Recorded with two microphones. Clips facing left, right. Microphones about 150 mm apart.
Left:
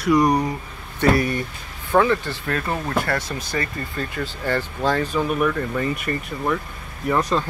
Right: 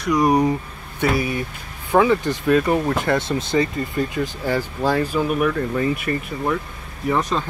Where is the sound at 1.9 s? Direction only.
15° right (ahead or behind).